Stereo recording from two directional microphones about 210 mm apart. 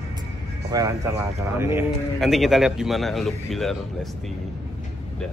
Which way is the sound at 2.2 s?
Centre (ahead or behind).